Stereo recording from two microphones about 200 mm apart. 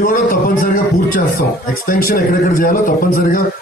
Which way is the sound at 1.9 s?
45° left (ahead or behind).